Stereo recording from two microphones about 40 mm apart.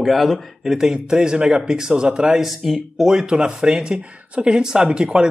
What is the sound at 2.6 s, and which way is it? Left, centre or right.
Speech, centre.